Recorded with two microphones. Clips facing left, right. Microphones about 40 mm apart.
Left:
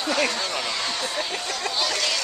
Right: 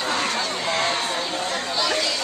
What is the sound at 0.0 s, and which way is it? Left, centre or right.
Chatter, right.